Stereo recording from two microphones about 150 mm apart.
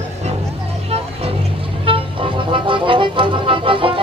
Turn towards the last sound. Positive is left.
turn(degrees=-35)  # may be behind; listen again after turning